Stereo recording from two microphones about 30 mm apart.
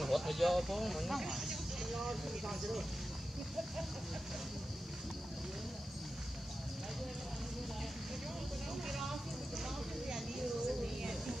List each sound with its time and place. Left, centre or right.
0.0 s speech: centre
8.8 s music: centre
10.4 s a sound: centre